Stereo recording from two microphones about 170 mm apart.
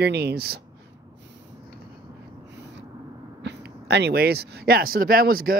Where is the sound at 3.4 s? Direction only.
85° right.